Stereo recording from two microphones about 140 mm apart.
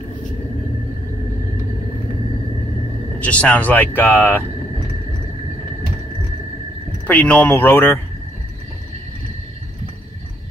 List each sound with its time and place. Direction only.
3.2 s speech: 10° left (ahead or behind)
7.1 s speech: 10° left (ahead or behind)